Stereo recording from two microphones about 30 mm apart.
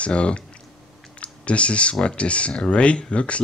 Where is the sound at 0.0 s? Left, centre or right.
Left.